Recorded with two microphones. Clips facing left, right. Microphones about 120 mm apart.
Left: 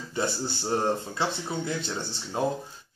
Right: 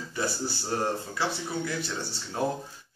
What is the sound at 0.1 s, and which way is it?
Speech, 25° left (ahead or behind).